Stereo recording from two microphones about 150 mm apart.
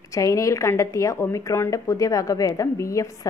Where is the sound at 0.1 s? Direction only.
20° left (ahead or behind).